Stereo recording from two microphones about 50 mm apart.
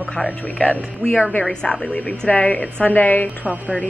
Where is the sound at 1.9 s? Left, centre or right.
Left.